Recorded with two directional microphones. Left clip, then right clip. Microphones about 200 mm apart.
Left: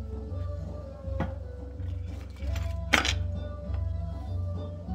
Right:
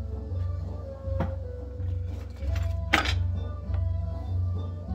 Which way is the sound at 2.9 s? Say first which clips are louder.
Even; 50° left (ahead or behind).